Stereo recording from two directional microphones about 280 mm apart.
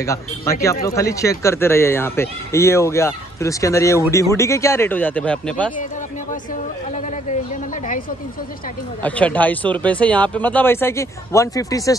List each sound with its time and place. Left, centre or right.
0.0 s speech: centre
6.5 s a woman's voice: left
9.0 s speech: centre